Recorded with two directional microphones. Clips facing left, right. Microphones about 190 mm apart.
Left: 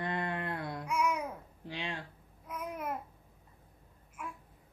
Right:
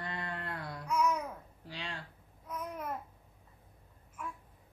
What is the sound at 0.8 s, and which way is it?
Babbling, 10° left (ahead or behind).